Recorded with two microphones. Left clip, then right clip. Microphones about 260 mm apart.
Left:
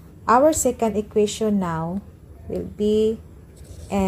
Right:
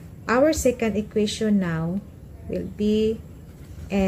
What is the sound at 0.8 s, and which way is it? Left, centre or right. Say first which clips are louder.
A woman's voice: left 4 dB; centre.